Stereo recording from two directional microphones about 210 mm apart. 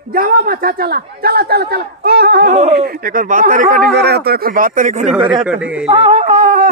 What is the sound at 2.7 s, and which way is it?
Speech, 45° right (ahead or behind).